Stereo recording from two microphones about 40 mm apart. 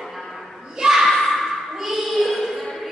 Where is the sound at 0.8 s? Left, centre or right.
Centre.